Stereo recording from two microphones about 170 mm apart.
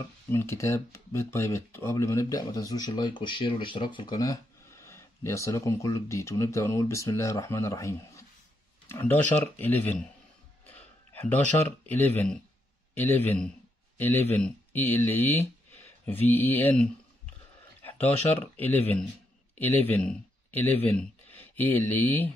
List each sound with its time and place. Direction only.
0.0 s speech: 15° left (ahead or behind)
10.7 s a sound: 10° left (ahead or behind)
11.9 s a man's voice: 10° left (ahead or behind)